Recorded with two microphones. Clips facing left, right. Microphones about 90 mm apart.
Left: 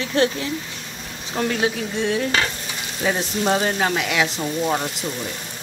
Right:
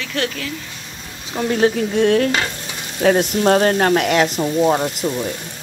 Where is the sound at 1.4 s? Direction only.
40° right (ahead or behind).